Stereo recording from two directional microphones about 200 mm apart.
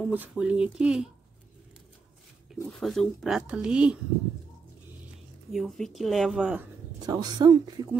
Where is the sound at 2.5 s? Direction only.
Centre (ahead or behind).